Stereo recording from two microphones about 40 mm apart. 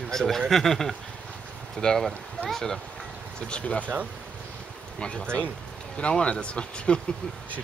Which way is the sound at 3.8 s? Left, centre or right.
Right.